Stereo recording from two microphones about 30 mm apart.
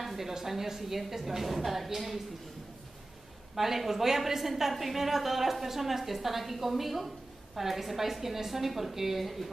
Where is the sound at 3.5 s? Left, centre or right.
Centre.